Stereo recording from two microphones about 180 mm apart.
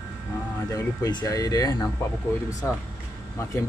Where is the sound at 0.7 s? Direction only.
20° left (ahead or behind).